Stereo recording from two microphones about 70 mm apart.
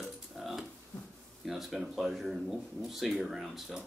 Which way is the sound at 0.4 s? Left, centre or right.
Centre.